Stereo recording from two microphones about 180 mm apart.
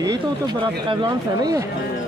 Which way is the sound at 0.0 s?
20° right (ahead or behind).